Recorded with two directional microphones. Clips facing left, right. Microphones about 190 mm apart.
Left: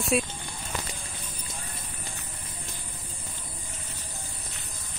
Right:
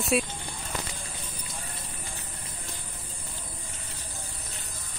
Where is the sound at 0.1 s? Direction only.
Centre (ahead or behind).